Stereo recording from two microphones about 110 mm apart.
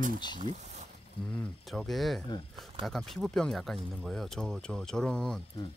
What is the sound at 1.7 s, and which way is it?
Speech, centre (ahead or behind).